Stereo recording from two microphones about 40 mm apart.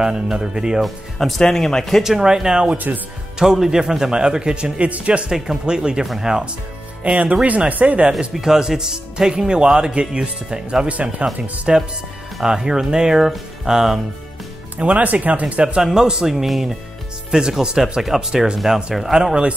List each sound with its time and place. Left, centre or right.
0.0 s speech: centre
1.1 s speech: centre
1.5 s speech: centre
2.0 s speech: centre
3.3 s speech: centre
4.7 s speech: right
5.3 s speech: centre
7.0 s speech: right
8.4 s speech: centre
10.9 s speech: right
12.4 s speech: centre
14.8 s speech: right
15.8 s speech: centre
18.0 s speech: centre